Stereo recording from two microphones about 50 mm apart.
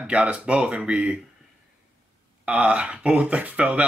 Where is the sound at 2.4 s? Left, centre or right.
Right.